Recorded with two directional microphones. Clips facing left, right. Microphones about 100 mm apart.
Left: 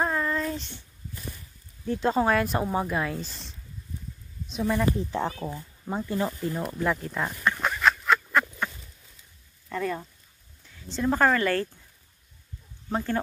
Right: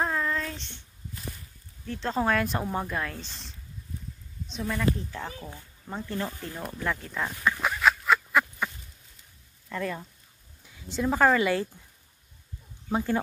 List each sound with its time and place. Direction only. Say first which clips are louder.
0.0 s child singing: left 2 dB; centre (ahead or behind)
1.9 s speech: left 7 dB; 15° left (ahead or behind)
2.1 s speech: even; 5° left (ahead or behind)
4.7 s speech: left 1 dB; 25° left (ahead or behind)
6.2 s a sound: left 6 dB; 5° left (ahead or behind)
9.7 s speech: left 3 dB; 5° left (ahead or behind); by 11.8 s 10° right (ahead or behind)
12.9 s speech: right 1 dB; 10° right (ahead or behind)